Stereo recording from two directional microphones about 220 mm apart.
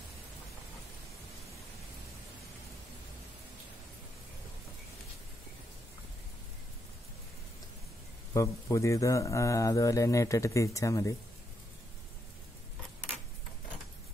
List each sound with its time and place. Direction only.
8.3 s a man's voice: 15° left (ahead or behind)